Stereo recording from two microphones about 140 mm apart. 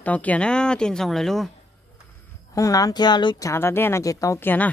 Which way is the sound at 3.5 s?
15° left (ahead or behind).